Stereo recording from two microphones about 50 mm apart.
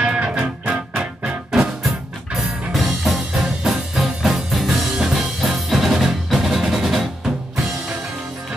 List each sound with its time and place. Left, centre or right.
0.0 s music: centre
2.3 s music: centre